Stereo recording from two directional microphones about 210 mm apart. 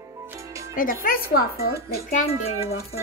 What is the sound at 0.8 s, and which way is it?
A child's voice, 40° left (ahead or behind).